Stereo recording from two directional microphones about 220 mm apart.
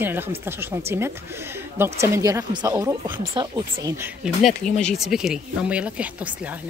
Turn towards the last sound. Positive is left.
turn(degrees=-5)  # may be behind; listen again after turning